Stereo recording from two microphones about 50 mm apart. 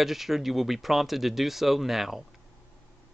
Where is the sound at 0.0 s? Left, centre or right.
Centre.